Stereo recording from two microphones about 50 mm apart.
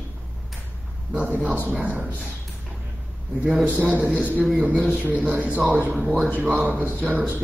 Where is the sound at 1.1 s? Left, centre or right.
Right.